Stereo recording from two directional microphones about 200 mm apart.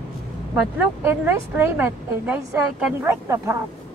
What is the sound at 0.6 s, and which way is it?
Speech, 10° right (ahead or behind).